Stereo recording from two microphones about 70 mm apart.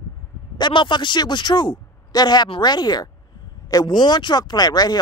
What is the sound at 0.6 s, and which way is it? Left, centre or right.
Speech, left.